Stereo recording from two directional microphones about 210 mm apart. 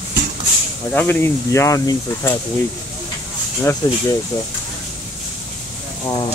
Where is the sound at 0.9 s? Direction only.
10° left (ahead or behind).